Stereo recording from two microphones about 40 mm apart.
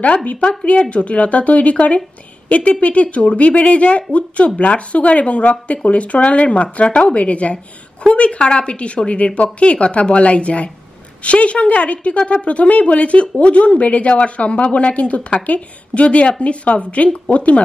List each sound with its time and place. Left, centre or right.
0.0 s speech: left